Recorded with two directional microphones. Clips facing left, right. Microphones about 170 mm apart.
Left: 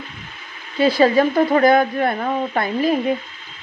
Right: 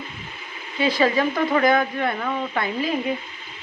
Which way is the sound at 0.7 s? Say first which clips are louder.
Left 6 dB; 35° left (ahead or behind).